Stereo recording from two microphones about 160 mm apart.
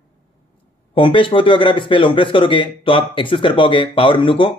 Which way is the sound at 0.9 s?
35° left (ahead or behind).